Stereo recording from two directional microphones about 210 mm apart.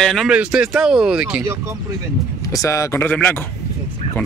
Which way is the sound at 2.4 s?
15° left (ahead or behind).